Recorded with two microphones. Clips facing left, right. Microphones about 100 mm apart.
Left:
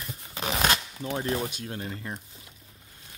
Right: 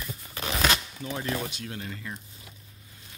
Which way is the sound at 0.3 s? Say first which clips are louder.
Left 2 dB; 20° left (ahead or behind).